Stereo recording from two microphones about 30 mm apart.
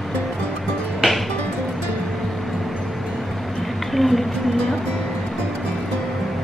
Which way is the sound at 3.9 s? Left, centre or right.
Centre.